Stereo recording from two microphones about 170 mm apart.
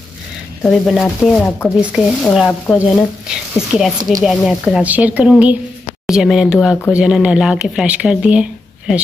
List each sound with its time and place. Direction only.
0.7 s speech: centre (ahead or behind)
1.8 s speech: 5° right (ahead or behind)
2.4 s speech: 10° left (ahead or behind)
3.7 s speech: 5° right (ahead or behind)